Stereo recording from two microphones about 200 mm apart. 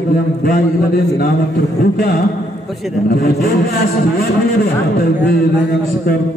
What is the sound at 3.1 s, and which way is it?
Speech, 50° left (ahead or behind).